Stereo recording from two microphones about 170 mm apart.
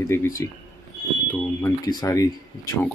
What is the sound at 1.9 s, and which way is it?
Speech, 20° left (ahead or behind).